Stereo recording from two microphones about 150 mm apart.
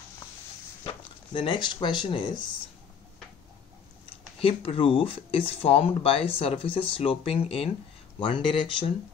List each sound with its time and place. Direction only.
1.3 s speech: 35° left (ahead or behind)
4.4 s speech: 40° left (ahead or behind)